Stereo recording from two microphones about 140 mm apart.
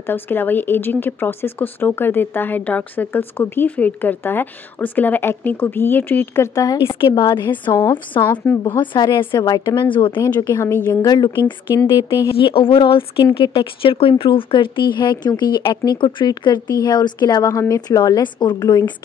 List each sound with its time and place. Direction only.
0.0 s speech: 15° left (ahead or behind)
7.2 s a woman's voice: 35° left (ahead or behind)
8.2 s speech: 10° left (ahead or behind)
8.6 s a woman's voice: 30° left (ahead or behind)
10.2 s speech: 20° left (ahead or behind)
11.1 s a woman's voice: 30° left (ahead or behind)
11.7 s a woman's voice: 20° left (ahead or behind)
12.4 s a woman's voice: 40° left (ahead or behind)